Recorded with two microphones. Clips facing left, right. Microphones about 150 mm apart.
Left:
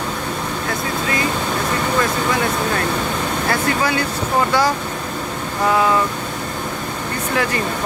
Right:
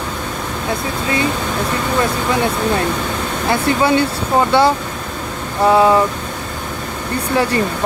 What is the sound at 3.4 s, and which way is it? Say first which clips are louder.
Speech: right 6 dB; 25° right (ahead or behind).